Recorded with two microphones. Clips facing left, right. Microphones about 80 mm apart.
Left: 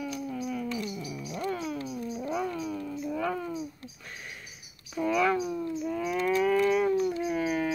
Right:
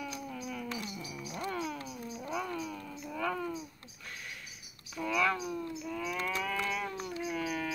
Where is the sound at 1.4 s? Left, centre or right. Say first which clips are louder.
Left 4 dB; centre.